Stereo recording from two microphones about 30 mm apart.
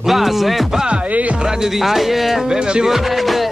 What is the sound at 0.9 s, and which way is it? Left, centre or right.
Music, right.